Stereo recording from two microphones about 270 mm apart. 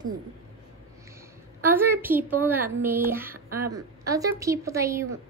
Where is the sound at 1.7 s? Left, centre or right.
Centre.